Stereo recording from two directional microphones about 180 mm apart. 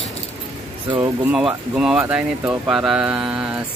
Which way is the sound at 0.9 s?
25° right (ahead or behind).